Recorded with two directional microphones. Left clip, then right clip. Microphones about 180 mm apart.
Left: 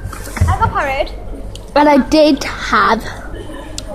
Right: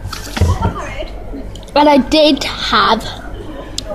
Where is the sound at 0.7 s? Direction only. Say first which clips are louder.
Left 9 dB; 55° left (ahead or behind).